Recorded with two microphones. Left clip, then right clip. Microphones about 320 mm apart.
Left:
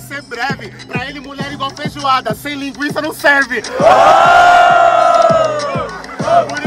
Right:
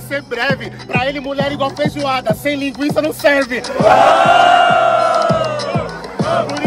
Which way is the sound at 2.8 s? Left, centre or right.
Centre.